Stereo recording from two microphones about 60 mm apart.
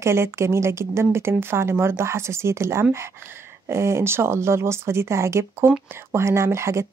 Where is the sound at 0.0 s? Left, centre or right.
Right.